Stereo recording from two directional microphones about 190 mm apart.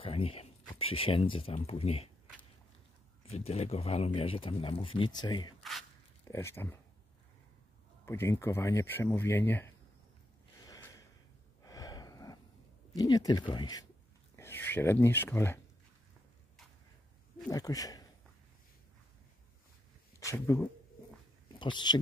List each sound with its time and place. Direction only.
0.0 s speech: 30° left (ahead or behind)
3.3 s speech: 35° left (ahead or behind)
5.6 s a sound: centre (ahead or behind)
6.2 s speech: 15° left (ahead or behind)
8.0 s speech: 15° left (ahead or behind)
10.6 s a sound: 20° left (ahead or behind)
11.6 s gasp: 20° left (ahead or behind)
12.9 s speech: 20° left (ahead or behind)
17.5 s speech: 20° left (ahead or behind)
20.2 s speech: 15° left (ahead or behind)
21.5 s speech: 25° left (ahead or behind)